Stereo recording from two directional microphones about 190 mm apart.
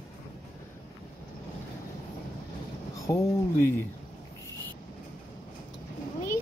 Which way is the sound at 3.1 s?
15° left (ahead or behind).